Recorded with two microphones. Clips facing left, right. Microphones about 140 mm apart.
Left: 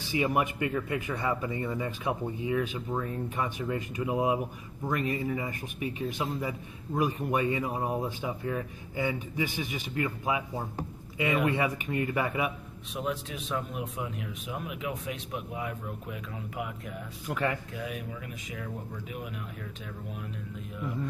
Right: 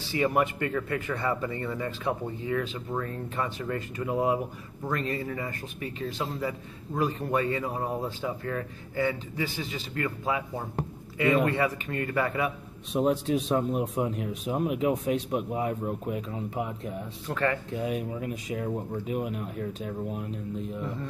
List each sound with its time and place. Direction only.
0.1 s speech: 15° left (ahead or behind)
12.4 s a man's voice: 35° right (ahead or behind)
17.3 s speech: 10° left (ahead or behind)
17.6 s a man's voice: 35° right (ahead or behind)